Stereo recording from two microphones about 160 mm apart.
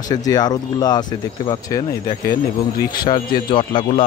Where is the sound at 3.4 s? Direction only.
30° left (ahead or behind).